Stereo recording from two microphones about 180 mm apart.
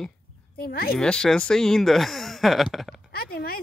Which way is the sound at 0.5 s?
60° left (ahead or behind).